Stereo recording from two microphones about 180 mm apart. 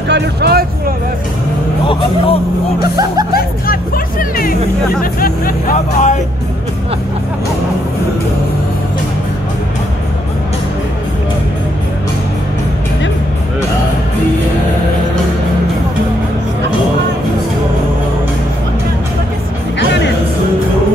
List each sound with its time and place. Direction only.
0.1 s speech: 65° right (ahead or behind)
1.9 s speech: 30° left (ahead or behind)
3.3 s music: 55° left (ahead or behind)
5.2 s speech: 50° left (ahead or behind)